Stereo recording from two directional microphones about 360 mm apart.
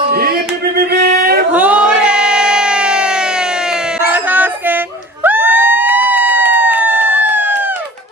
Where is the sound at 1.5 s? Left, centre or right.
Centre.